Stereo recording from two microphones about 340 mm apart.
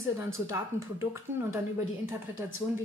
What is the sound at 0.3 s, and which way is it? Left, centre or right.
Speech, centre.